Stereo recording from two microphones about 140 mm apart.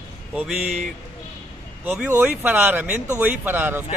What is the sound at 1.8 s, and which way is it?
Speech, 15° right (ahead or behind).